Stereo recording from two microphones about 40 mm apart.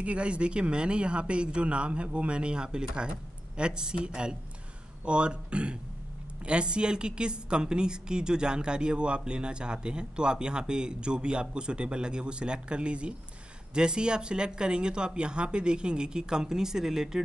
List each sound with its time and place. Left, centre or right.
0.0 s a woman's voice: right; by 17.2 s centre